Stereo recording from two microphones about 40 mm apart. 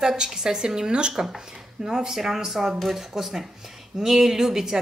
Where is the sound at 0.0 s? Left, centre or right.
Centre.